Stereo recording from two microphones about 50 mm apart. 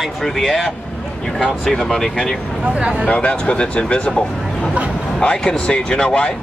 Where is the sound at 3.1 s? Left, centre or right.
Left.